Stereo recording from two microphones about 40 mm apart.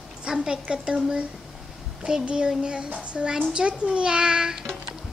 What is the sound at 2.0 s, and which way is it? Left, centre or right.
A child's voice, right.